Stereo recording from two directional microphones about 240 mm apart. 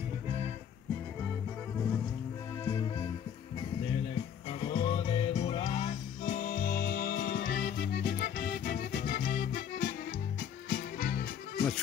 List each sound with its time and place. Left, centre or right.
2.6 s music: centre
4.5 s music: left